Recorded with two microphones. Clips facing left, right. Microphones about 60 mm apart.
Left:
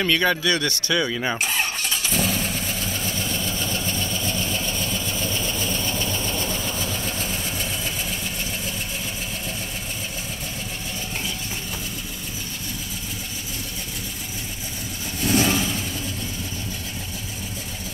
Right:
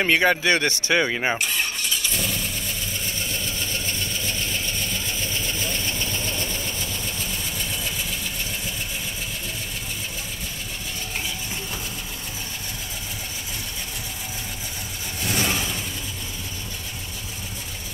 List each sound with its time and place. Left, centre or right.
0.0 s speech: right
0.4 s speech: right
1.4 s vehicle: left
2.1 s vehicle: left
15.2 s vehicle: centre